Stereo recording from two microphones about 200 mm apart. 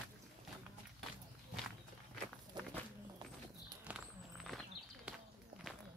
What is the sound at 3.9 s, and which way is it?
Walk, 5° right (ahead or behind).